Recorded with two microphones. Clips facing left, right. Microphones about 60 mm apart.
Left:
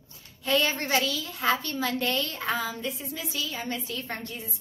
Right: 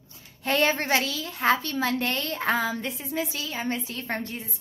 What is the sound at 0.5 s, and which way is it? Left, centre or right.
A child's voice, right.